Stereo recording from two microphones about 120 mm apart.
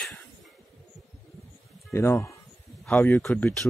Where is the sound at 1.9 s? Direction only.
25° left (ahead or behind).